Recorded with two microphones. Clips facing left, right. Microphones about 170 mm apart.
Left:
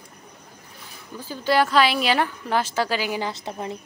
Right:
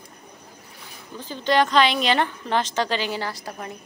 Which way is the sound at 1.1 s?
10° left (ahead or behind).